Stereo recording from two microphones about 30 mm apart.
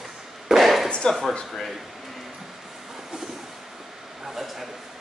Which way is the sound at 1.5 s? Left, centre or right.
Centre.